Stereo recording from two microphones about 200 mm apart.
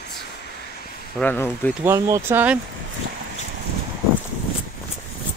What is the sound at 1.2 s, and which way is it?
Speech, 10° left (ahead or behind).